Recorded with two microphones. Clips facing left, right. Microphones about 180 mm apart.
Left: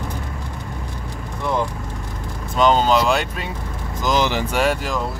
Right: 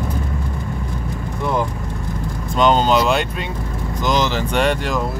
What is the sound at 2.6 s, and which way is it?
Speech, centre (ahead or behind).